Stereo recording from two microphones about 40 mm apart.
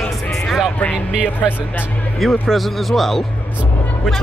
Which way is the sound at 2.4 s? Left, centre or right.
Centre.